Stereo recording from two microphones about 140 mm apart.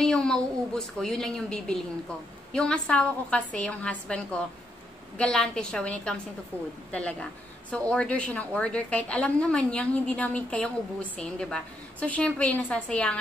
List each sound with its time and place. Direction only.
0.0 s a woman's voice: 5° left (ahead or behind)